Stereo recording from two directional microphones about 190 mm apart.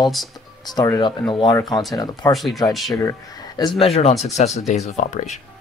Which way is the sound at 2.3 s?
Centre (ahead or behind).